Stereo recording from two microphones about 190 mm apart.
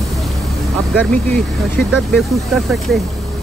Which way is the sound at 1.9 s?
Centre (ahead or behind).